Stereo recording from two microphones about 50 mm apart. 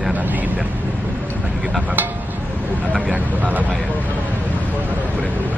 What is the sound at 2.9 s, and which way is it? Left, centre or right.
Speech, right.